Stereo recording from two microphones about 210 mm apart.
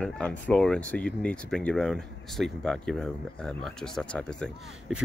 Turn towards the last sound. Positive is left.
turn(degrees=5)  # may be behind; listen again after turning